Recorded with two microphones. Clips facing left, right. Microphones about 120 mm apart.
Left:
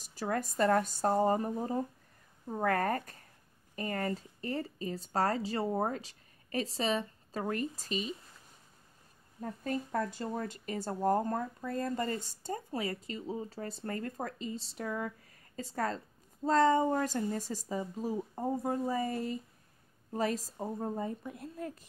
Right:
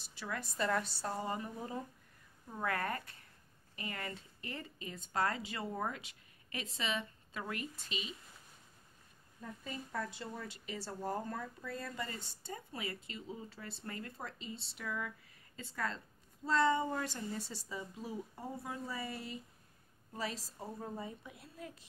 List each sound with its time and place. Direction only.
0.0 s speech: 45° left (ahead or behind)
9.4 s speech: 50° left (ahead or behind)